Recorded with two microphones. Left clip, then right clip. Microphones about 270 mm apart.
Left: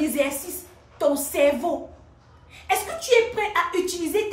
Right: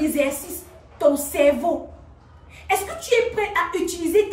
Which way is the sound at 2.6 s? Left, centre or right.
Centre.